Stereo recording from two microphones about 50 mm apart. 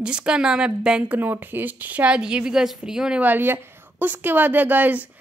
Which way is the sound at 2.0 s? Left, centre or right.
Centre.